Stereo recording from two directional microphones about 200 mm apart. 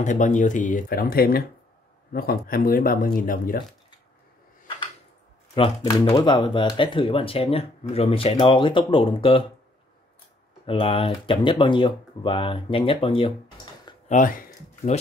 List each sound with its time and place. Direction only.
0.0 s speech: 40° left (ahead or behind)
6.0 s speech: 25° left (ahead or behind)
10.7 s speech: 25° left (ahead or behind)
14.0 s speech: 40° left (ahead or behind)